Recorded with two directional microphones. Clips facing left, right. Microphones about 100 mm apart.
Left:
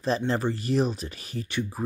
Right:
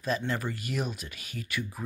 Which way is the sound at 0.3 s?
30° left (ahead or behind).